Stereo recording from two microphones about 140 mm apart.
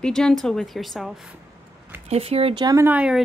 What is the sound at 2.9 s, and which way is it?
Speech, 5° right (ahead or behind).